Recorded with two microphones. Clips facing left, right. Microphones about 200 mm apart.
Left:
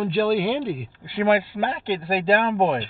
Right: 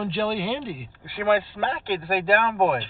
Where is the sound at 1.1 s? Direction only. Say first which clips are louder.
Left 2 dB; 15° left (ahead or behind).